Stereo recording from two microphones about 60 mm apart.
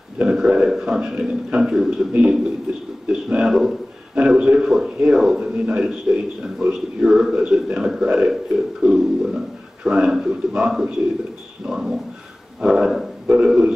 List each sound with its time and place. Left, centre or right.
0.2 s a man's voice: centre
3.4 s a man's voice: centre
8.8 s music: centre
9.8 s a man's voice: centre